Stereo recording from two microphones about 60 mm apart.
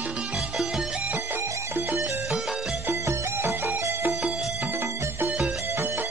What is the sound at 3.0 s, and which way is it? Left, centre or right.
Music, right.